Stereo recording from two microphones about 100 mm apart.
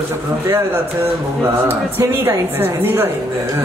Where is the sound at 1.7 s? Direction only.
20° right (ahead or behind).